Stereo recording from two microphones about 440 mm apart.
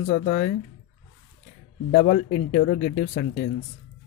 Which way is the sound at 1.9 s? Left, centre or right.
Centre.